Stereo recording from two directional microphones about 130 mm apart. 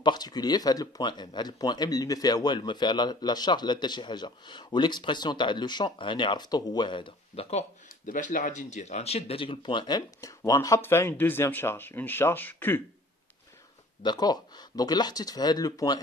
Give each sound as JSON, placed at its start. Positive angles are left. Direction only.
{"t": 0.0, "sound": "speech", "side_deg": 30}
{"t": 8.1, "sound": "speech", "side_deg": 85}
{"t": 14.0, "sound": "speech", "side_deg": 30}